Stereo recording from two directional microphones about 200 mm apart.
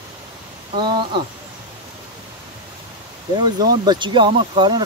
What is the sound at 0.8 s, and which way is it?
Speech, 25° right (ahead or behind).